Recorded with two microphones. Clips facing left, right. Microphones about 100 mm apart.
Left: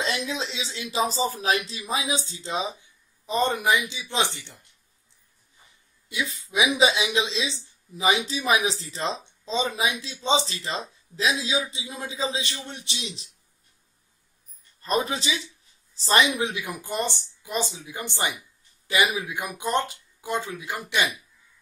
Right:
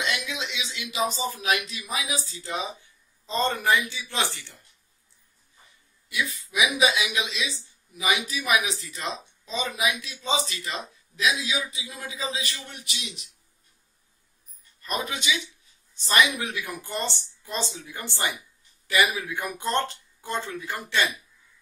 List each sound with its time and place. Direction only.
0.0 s speech: 35° left (ahead or behind)
6.0 s speech: 25° left (ahead or behind)
14.8 s speech: 30° left (ahead or behind); by 21.1 s 15° left (ahead or behind)